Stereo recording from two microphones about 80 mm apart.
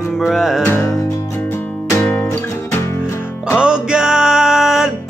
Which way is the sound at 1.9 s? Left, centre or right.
Left.